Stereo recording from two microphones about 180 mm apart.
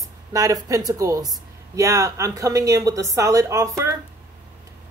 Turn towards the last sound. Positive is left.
turn(degrees=-15)  # may be behind; listen again after turning